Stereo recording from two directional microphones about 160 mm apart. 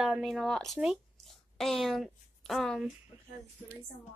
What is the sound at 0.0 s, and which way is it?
Speech, centre (ahead or behind).